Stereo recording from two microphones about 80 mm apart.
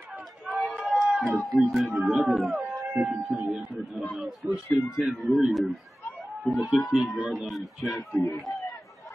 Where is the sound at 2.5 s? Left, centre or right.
Centre.